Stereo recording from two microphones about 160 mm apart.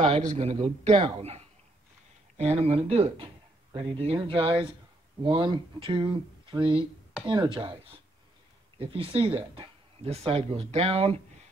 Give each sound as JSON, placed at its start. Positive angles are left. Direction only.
{"t": 0.0, "sound": "a man's voice", "side_deg": -50}